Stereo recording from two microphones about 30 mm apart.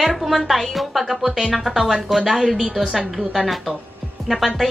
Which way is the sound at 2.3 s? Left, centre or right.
Centre.